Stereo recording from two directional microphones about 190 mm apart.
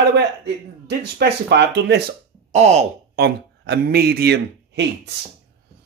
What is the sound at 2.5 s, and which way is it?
Speech, 35° right (ahead or behind).